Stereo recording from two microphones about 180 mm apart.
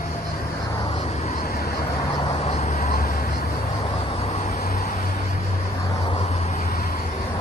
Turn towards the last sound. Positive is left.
turn(degrees=50)  # may be behind; listen again after turning